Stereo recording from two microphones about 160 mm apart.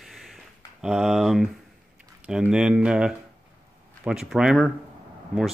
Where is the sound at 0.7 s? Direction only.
5° right (ahead or behind).